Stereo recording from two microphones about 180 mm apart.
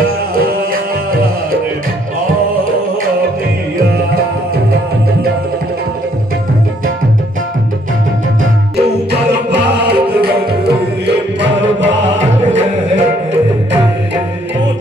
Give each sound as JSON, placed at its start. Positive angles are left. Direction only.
{"t": 8.7, "sound": "music", "side_deg": -70}
{"t": 11.1, "sound": "music", "side_deg": -90}
{"t": 12.1, "sound": "music", "side_deg": -40}